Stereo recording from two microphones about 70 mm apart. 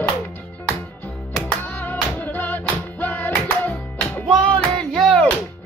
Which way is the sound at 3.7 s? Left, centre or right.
Centre.